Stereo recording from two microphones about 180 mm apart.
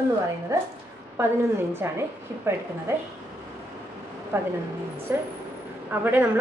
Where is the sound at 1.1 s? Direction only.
15° right (ahead or behind).